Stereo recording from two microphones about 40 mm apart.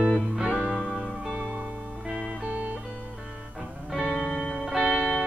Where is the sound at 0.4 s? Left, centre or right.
Centre.